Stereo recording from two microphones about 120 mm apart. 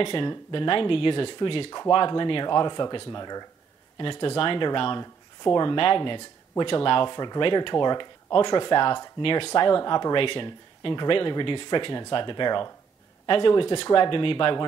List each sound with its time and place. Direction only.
0.0 s speech: 45° left (ahead or behind)
4.0 s speech: 45° left (ahead or behind)